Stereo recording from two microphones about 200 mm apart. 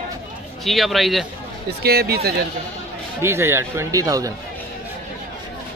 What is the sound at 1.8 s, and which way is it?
Speech, 50° right (ahead or behind).